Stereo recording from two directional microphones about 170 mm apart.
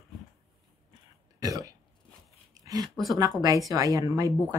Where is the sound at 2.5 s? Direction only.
20° right (ahead or behind).